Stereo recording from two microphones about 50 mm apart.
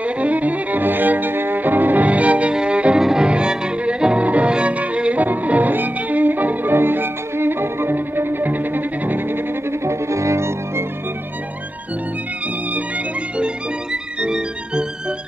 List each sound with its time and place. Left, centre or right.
0.0 s cello: right
2.5 s music: centre
3.0 s violin: centre
3.3 s violin: right
4.3 s music: right
9.7 s cello: right
14.2 s music: centre